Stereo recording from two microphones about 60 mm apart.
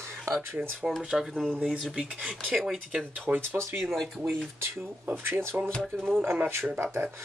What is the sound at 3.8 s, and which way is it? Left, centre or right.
Speech, centre.